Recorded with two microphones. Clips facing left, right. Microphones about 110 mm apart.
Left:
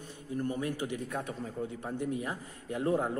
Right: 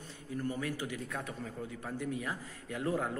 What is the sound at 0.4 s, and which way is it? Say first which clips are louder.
A man's voice: left 3 dB; 25° left (ahead or behind).